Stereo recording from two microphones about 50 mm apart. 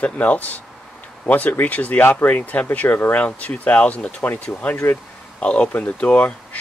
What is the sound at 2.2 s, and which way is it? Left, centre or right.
Speech, left.